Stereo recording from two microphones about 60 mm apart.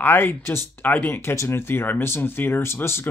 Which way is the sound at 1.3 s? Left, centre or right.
Left.